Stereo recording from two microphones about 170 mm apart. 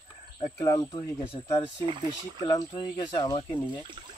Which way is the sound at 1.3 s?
35° left (ahead or behind).